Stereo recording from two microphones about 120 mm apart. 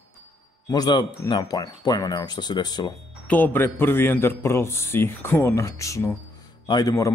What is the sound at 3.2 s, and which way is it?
A man's voice, 15° left (ahead or behind).